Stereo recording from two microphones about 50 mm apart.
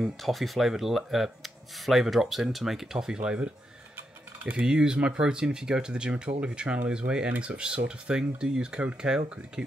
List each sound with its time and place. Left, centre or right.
0.0 s speech: centre
3.2 s speech: right
4.5 s speech: centre